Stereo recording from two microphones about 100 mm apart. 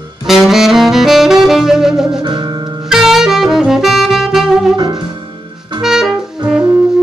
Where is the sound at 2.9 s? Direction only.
5° right (ahead or behind).